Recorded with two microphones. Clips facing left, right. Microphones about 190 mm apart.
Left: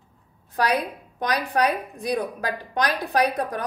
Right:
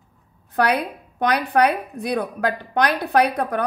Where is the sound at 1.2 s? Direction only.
60° right (ahead or behind).